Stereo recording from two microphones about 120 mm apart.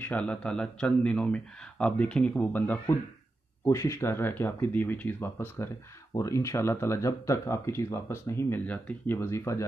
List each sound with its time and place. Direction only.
0.0 s speech: 10° left (ahead or behind)
3.6 s speech: 25° left (ahead or behind)